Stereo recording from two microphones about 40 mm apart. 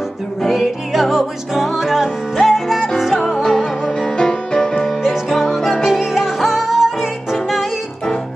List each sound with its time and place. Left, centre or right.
0.4 s music: centre
3.4 s music: centre
5.0 s music: centre